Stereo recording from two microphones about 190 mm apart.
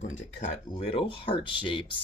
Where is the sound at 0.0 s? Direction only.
35° left (ahead or behind).